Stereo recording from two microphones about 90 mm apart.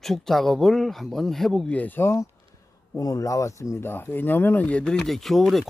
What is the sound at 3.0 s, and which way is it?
Speech, 40° left (ahead or behind).